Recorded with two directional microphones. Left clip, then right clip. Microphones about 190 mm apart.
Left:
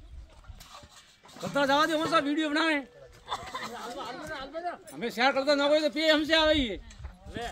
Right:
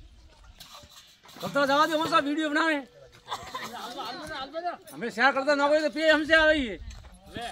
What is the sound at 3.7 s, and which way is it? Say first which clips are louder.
Chatter: right 2 dB; 40° left (ahead or behind).